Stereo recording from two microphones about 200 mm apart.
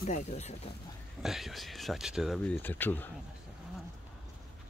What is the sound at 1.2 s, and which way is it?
Speech, centre (ahead or behind).